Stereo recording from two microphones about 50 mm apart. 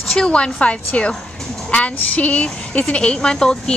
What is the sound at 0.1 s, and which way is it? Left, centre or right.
Speech, centre.